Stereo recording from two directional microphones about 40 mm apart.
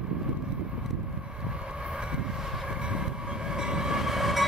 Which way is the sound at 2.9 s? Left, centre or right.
Centre.